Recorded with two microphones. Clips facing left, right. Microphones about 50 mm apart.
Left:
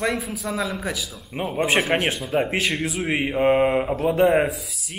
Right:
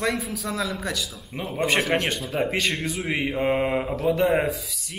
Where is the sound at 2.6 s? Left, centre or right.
Centre.